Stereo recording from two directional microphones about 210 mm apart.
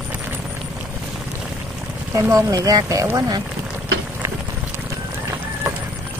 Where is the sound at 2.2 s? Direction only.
15° right (ahead or behind).